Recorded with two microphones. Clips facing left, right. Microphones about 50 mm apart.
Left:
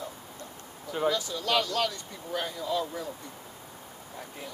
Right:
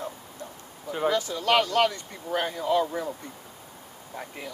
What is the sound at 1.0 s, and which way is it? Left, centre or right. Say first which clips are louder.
Speech: right 4 dB; right.